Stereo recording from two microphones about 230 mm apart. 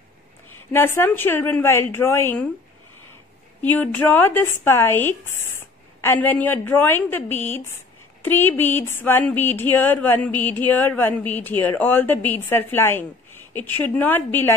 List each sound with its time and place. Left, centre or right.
0.5 s speech: centre
3.6 s speech: centre